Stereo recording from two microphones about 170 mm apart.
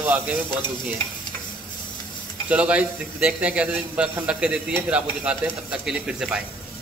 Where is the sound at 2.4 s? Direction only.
5° right (ahead or behind).